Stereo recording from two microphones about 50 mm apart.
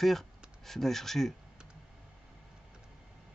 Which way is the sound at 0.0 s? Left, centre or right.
Centre.